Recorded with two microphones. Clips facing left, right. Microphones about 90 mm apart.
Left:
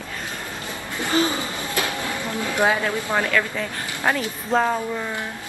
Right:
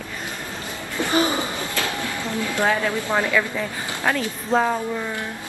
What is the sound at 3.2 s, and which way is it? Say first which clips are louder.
Speech: right 1 dB; 10° right (ahead or behind).